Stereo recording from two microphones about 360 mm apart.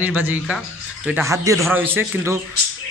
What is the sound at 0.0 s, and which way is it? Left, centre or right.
Speech, centre.